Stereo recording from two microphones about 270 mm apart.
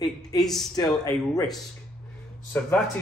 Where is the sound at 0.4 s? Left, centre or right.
Centre.